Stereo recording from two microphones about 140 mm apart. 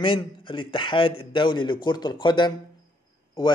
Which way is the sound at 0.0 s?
35° left (ahead or behind).